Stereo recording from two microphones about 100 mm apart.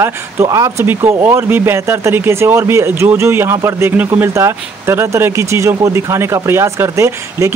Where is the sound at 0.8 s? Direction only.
20° right (ahead or behind).